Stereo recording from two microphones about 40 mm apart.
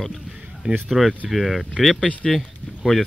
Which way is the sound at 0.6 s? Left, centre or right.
Right.